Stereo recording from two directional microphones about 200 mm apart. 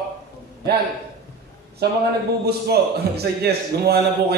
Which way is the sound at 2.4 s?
55° right (ahead or behind).